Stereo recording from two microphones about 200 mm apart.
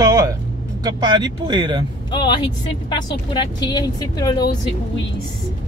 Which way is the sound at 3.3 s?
20° left (ahead or behind).